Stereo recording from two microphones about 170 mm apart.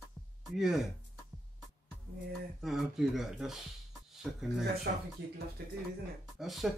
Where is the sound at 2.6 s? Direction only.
Centre (ahead or behind).